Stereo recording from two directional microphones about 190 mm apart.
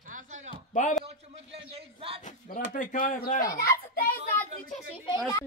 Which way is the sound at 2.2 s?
40° left (ahead or behind).